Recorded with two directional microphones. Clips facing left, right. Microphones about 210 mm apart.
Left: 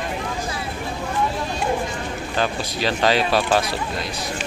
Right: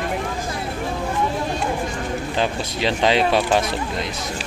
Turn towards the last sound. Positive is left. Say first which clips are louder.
# right 1 dB
turn(degrees=-20)  # may be behind; listen again after turning